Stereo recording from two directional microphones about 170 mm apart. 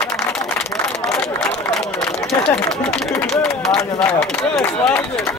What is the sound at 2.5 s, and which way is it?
Speech, 5° left (ahead or behind).